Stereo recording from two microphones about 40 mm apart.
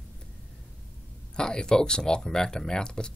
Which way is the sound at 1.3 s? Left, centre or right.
Left.